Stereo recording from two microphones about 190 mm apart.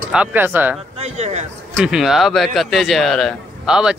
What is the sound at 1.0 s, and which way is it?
Speech, 35° right (ahead or behind).